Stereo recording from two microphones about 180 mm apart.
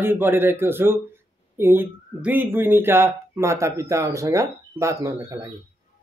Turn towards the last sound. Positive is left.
turn(degrees=-15)  # may be behind; listen again after turning